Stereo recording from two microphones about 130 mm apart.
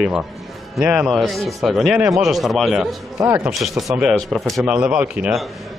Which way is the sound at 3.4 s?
Centre (ahead or behind).